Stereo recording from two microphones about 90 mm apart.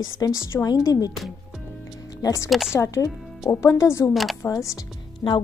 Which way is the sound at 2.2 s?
40° left (ahead or behind).